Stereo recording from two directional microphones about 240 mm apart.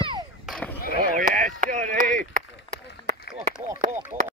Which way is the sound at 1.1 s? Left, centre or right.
Right.